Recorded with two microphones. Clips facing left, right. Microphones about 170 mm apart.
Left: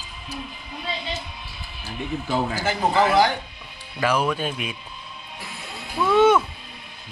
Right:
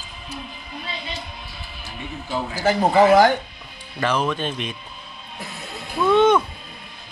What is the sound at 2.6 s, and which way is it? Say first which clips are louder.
Speech: right 7 dB; 45° right (ahead or behind).